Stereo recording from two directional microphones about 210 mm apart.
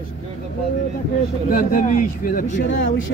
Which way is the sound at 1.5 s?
40° left (ahead or behind).